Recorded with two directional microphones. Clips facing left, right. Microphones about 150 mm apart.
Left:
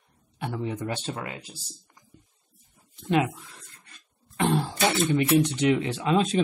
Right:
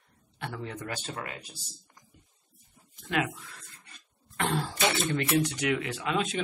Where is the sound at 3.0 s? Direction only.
25° left (ahead or behind).